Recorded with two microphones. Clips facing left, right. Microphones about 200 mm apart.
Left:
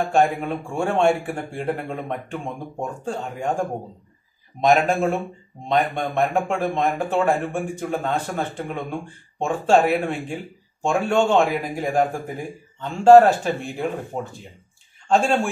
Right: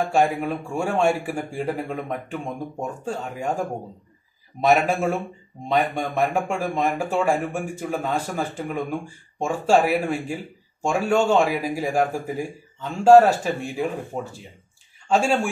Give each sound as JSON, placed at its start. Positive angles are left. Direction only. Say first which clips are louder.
{"t": 0.0, "sound": "speech", "louder": "left 1 dB", "side_deg": -5}
{"t": 4.6, "sound": "speech", "louder": "left 1 dB", "side_deg": -5}
{"t": 15.0, "sound": "speech", "louder": "left 1 dB", "side_deg": -10}